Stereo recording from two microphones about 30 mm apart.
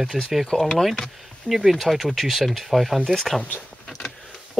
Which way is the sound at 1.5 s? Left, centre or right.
Centre.